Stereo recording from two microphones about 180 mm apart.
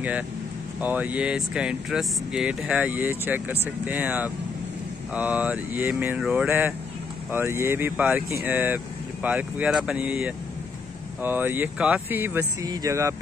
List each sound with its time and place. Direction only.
0.7 s speech: 10° right (ahead or behind)